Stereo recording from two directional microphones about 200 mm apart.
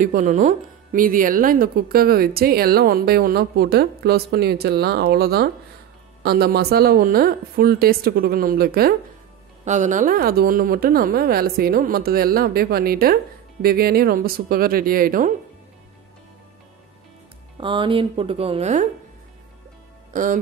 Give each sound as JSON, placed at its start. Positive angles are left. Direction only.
{"t": 0.0, "sound": "speech", "side_deg": -40}
{"t": 9.7, "sound": "speech", "side_deg": -40}
{"t": 17.6, "sound": "speech", "side_deg": -25}
{"t": 20.1, "sound": "music", "side_deg": -40}